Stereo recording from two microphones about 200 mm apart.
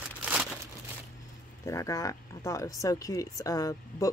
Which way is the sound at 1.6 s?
15° left (ahead or behind).